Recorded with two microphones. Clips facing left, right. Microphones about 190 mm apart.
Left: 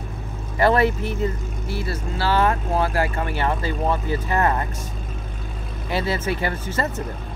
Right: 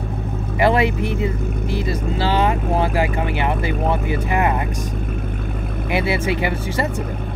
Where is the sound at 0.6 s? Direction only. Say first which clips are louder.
Right 1 dB; 15° right (ahead or behind).